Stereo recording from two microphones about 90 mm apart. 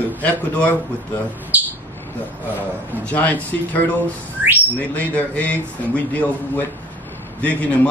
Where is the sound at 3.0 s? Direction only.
15° left (ahead or behind).